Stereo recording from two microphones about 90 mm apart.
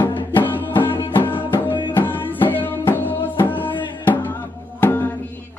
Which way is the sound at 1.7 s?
60° left (ahead or behind).